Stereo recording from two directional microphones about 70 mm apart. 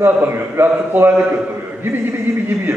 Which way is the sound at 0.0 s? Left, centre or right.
Right.